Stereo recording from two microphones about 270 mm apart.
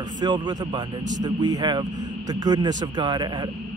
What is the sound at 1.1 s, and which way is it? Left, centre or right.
Speech, right.